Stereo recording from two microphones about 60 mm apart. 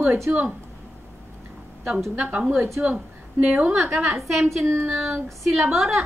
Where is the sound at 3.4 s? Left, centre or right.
Right.